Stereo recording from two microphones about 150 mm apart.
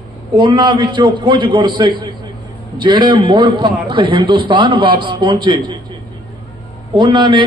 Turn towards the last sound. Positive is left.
turn(degrees=-30)  # may be behind; listen again after turning